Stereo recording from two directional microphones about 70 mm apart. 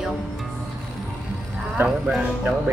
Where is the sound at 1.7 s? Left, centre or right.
Centre.